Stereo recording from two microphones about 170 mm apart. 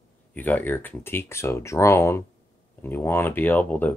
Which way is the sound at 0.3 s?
10° left (ahead or behind).